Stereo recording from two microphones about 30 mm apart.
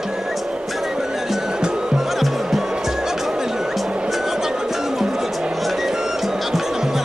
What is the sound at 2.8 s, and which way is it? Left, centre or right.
Music, centre.